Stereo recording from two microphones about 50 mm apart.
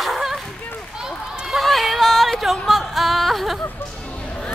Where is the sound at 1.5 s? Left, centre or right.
Centre.